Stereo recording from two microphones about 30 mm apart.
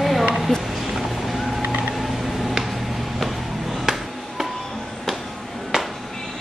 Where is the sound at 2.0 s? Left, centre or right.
Centre.